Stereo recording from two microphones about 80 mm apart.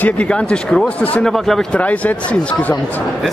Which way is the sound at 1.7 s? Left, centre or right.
Centre.